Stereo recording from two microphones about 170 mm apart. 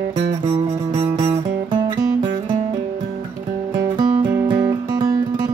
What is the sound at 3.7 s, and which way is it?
Music, 25° right (ahead or behind).